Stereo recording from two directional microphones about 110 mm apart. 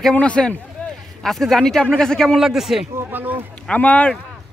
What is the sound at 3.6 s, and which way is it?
Speech, 10° left (ahead or behind).